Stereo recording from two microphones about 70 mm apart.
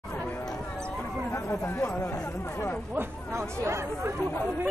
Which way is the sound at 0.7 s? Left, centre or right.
Centre.